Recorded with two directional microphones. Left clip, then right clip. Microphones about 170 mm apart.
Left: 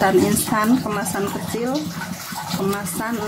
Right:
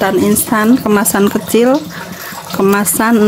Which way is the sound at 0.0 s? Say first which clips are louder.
Right 4 dB; 30° right (ahead or behind).